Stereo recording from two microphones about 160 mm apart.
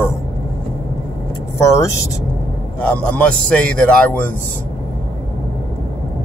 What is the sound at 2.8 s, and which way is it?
A man's voice, 5° left (ahead or behind).